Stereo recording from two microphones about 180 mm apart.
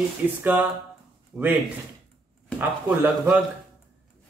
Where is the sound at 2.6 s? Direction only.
10° right (ahead or behind).